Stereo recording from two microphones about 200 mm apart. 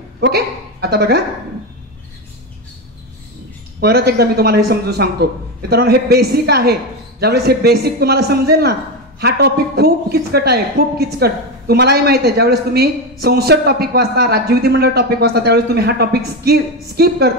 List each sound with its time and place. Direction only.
0.2 s speech: 55° right (ahead or behind)
3.8 s a man's voice: 50° right (ahead or behind)